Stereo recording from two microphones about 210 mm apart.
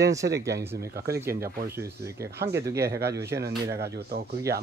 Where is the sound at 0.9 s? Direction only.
45° right (ahead or behind).